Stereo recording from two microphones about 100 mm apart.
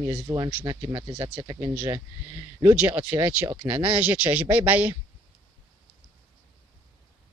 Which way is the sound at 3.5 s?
45° right (ahead or behind).